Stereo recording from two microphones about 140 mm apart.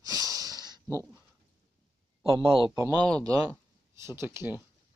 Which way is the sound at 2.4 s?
40° right (ahead or behind).